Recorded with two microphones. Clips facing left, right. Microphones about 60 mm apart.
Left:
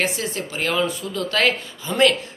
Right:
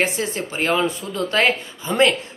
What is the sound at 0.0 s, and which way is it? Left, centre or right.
A man's voice, right.